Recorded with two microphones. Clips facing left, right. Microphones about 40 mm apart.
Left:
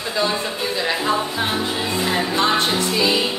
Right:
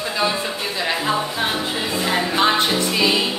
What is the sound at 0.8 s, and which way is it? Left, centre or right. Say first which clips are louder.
Speech: even; centre.